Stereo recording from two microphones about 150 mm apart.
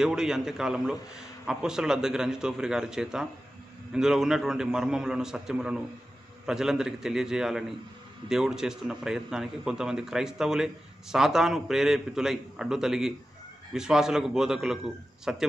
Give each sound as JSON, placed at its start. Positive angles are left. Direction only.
{"t": 0.0, "sound": "a man's voice", "side_deg": -5}